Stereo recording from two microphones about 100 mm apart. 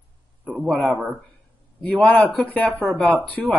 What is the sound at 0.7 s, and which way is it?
Speech, 15° left (ahead or behind).